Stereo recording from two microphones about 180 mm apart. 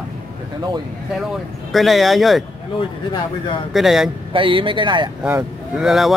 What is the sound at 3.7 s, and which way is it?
Speech, centre (ahead or behind).